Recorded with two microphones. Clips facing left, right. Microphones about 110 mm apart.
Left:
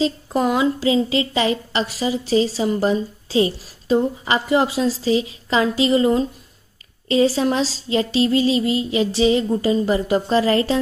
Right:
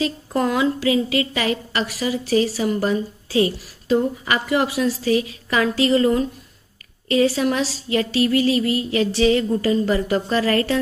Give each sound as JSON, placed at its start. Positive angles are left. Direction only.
{"t": 0.0, "sound": "a woman's voice", "side_deg": 20}